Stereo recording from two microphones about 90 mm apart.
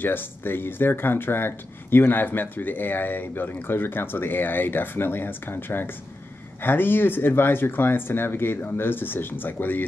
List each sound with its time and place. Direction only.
0.0 s speech: 25° left (ahead or behind)